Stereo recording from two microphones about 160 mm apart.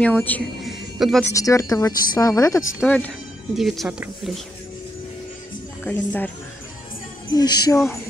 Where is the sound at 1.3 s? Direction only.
20° left (ahead or behind).